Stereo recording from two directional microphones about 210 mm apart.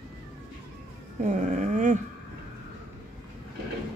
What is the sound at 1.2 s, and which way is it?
Dog, 35° right (ahead or behind).